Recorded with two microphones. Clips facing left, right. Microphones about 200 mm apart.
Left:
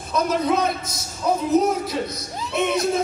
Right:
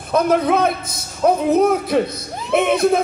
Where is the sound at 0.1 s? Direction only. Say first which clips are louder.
Right 5 dB; 55° right (ahead or behind).